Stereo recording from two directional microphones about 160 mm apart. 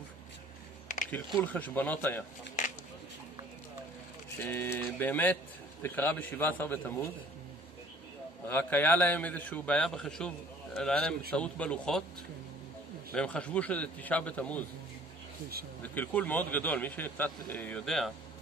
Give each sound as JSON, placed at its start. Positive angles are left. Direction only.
{"t": 1.4, "sound": "a man's voice", "side_deg": 10}
{"t": 2.6, "sound": "a sound", "side_deg": 55}
{"t": 4.4, "sound": "a man's voice", "side_deg": 15}
{"t": 8.5, "sound": "a man's voice", "side_deg": 10}
{"t": 13.1, "sound": "a man's voice", "side_deg": 5}
{"t": 15.8, "sound": "a man's voice", "side_deg": 10}